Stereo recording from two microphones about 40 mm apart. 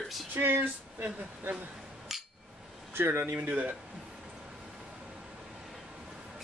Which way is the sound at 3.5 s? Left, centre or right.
Right.